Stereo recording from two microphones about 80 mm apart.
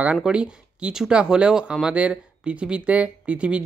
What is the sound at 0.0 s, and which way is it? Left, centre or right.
Speech, centre.